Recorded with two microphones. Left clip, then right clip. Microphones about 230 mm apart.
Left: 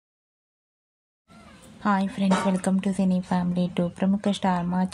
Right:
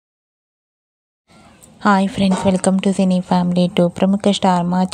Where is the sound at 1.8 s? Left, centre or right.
Right.